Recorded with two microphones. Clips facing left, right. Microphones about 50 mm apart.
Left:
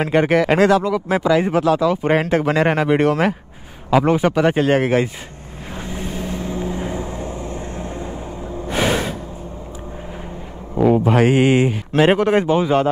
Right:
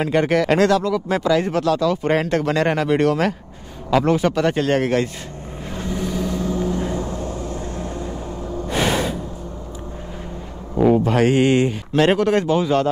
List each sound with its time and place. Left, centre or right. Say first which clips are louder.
0.1 s speech: left 2 dB; centre
5.9 s vehicle: right 3 dB; left
8.6 s snort: left 1 dB; centre
10.8 s speech: left 1 dB; centre